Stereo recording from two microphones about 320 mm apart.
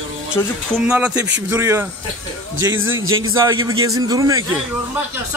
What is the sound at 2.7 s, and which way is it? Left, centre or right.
Speech, right.